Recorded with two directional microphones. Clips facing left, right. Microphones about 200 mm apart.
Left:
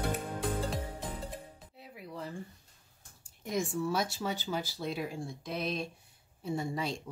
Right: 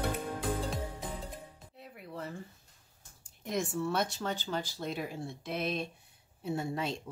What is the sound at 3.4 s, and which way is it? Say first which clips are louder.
Speech: even; centre (ahead or behind).